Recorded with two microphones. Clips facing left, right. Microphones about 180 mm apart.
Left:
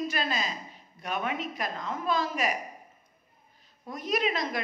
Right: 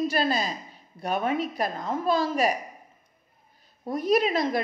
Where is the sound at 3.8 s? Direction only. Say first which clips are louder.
Right 7 dB; 35° right (ahead or behind).